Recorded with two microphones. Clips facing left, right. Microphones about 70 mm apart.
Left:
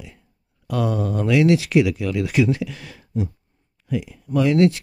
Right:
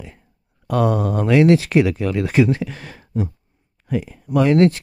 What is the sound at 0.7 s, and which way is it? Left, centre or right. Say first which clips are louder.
Speech: right 4 dB; right.